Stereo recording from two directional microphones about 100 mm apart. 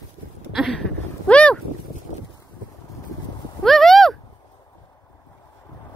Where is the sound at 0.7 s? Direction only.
10° left (ahead or behind).